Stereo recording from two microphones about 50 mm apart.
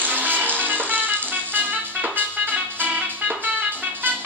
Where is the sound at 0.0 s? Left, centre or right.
Right.